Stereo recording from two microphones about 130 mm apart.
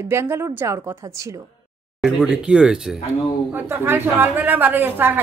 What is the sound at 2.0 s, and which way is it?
Speech, 5° right (ahead or behind).